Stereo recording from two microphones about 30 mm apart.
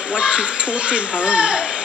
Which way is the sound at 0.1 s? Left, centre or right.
Right.